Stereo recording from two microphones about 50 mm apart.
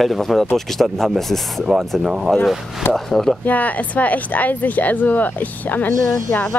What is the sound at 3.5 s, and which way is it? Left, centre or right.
A woman's voice, left.